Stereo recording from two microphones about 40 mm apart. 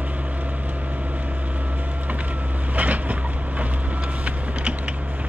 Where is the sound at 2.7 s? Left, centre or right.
Right.